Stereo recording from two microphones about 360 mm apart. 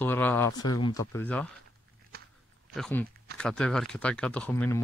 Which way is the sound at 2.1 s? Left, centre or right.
Right.